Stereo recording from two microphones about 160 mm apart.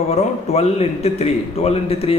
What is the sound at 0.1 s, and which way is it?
A man's voice, 40° left (ahead or behind).